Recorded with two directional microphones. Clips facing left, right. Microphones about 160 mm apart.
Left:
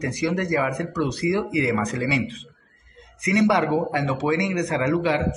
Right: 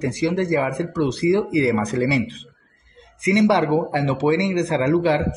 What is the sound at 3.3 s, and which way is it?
Speech, 30° right (ahead or behind).